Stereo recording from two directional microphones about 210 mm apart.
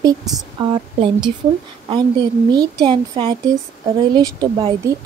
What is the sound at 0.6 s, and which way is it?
A woman's voice, 20° right (ahead or behind).